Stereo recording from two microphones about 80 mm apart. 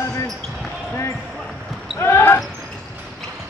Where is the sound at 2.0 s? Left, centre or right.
Left.